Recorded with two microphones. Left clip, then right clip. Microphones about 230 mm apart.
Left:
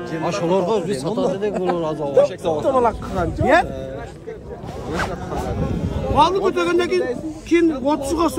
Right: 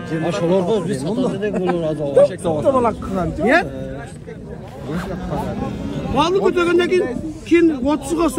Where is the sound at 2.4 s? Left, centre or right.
Right.